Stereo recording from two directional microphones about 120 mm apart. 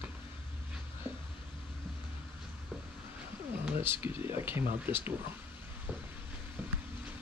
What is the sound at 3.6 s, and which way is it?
Speech, 15° right (ahead or behind).